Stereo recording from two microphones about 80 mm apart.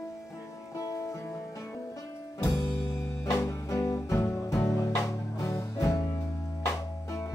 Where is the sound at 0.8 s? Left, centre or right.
Left.